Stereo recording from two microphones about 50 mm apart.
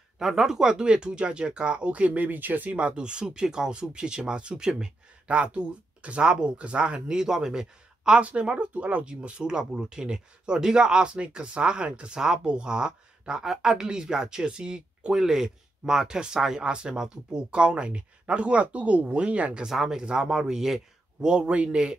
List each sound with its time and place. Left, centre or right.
0.2 s speech: centre; by 2.9 s right
3.0 s speech: centre
8.2 s speech: right
9.1 s speech: centre
19.6 s speech: centre